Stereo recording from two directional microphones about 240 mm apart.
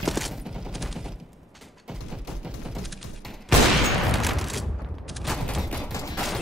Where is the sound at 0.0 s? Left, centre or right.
Centre.